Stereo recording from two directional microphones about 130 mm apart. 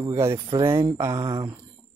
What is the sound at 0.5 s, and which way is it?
Speech, 40° right (ahead or behind).